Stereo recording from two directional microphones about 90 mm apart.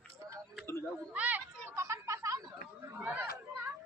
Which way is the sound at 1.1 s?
15° right (ahead or behind).